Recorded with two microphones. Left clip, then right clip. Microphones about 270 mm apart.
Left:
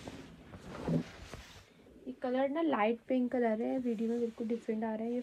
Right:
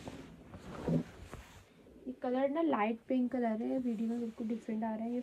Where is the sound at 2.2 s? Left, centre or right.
Right.